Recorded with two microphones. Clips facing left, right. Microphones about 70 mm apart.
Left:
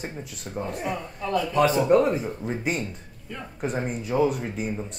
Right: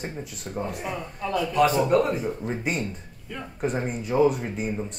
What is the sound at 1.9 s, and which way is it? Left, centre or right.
Speech, left.